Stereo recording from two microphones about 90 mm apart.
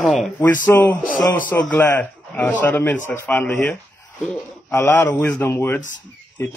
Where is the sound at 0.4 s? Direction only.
20° left (ahead or behind).